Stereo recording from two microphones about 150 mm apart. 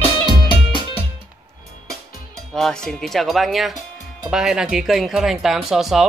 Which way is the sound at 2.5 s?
5° left (ahead or behind).